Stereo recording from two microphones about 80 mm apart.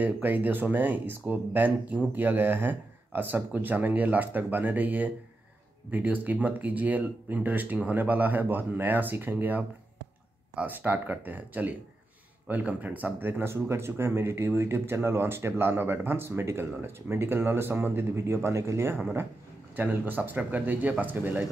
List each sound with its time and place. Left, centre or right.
0.0 s speech: right
19.7 s speech: right